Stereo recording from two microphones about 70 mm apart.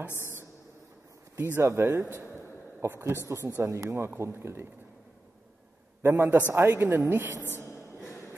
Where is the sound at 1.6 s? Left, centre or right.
Right.